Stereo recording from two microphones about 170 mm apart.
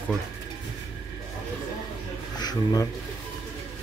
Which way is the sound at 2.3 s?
25° left (ahead or behind).